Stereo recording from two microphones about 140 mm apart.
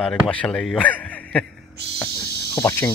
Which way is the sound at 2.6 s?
15° left (ahead or behind).